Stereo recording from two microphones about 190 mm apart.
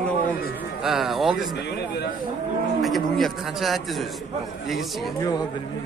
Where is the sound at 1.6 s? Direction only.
60° left (ahead or behind).